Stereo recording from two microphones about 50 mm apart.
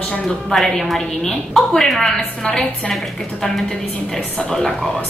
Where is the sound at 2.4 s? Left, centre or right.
Left.